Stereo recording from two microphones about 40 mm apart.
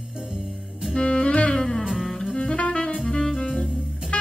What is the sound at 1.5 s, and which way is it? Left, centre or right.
Music, centre.